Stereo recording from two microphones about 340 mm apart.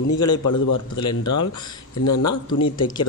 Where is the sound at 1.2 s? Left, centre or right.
Left.